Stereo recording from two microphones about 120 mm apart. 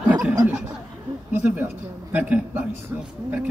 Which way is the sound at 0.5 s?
15° right (ahead or behind).